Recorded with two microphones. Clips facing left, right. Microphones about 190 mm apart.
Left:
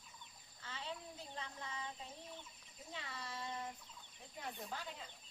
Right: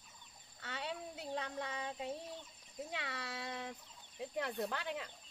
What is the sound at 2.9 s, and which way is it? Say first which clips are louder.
Speech: right 3 dB; 75° right (ahead or behind).